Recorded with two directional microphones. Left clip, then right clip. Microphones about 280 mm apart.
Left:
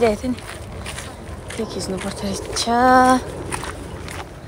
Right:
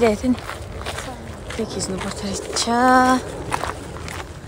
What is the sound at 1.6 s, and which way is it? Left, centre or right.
Speech, centre.